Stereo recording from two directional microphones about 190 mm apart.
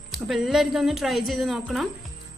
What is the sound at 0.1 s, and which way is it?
A woman's voice, centre (ahead or behind).